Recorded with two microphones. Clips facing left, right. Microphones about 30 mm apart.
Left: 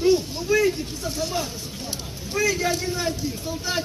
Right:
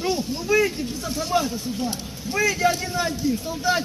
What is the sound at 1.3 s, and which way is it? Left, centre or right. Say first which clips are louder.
Speech: right 6 dB; right.